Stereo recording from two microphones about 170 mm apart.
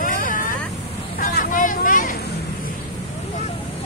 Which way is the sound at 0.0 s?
50° left (ahead or behind).